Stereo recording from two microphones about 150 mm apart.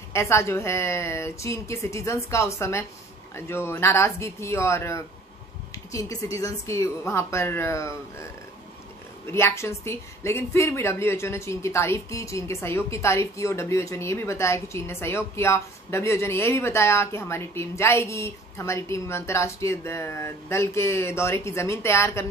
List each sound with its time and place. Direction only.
0.1 s a woman's voice: 20° left (ahead or behind)
9.3 s a woman's voice: 15° left (ahead or behind)